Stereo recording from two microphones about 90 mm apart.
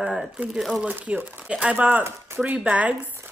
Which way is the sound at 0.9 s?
20° right (ahead or behind).